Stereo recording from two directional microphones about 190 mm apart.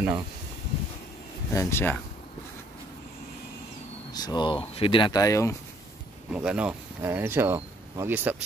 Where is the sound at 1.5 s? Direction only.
15° left (ahead or behind).